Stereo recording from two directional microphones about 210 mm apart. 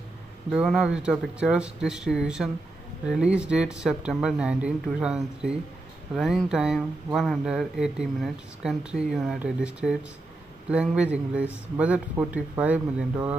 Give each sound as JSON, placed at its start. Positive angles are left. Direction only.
{"t": 0.5, "sound": "speech", "side_deg": -5}